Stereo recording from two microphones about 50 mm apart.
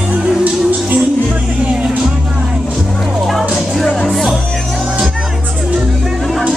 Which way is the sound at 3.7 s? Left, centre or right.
Centre.